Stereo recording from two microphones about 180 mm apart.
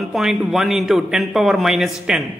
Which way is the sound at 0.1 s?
Centre (ahead or behind).